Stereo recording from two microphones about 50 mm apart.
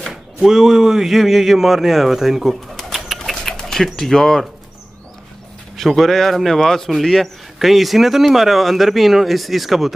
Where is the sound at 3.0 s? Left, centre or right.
Centre.